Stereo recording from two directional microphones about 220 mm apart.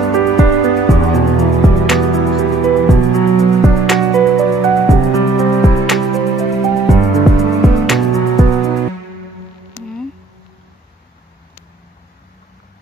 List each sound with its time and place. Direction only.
0.0 s music: centre (ahead or behind)